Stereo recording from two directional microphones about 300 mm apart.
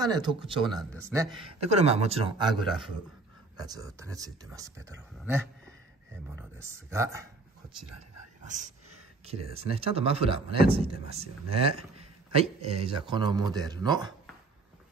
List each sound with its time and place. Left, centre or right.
0.0 s speech: centre
0.7 s speech: centre
1.1 s a man's voice: centre
2.6 s speech: centre
3.5 s speech: centre
8.5 s a man's voice: right
9.8 s a man's voice: centre